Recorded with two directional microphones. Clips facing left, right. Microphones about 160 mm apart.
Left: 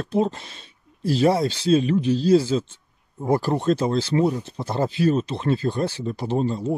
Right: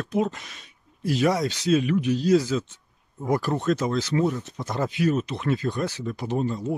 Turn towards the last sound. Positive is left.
turn(degrees=30)  # may be behind; listen again after turning